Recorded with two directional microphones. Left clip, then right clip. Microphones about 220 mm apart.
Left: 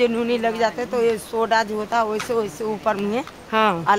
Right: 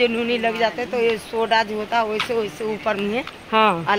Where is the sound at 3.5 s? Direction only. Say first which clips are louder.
Right 2 dB; 15° right (ahead or behind).